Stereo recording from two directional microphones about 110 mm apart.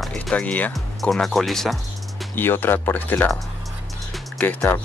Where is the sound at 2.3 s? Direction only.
20° left (ahead or behind).